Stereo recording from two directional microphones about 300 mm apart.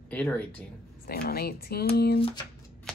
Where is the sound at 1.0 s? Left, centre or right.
Left.